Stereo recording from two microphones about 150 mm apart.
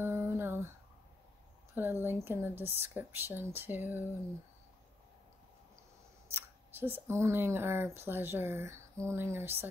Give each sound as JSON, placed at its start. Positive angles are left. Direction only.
{"t": 0.0, "sound": "a sound", "side_deg": -15}
{"t": 1.8, "sound": "speech", "side_deg": -15}
{"t": 6.3, "sound": "speech", "side_deg": -15}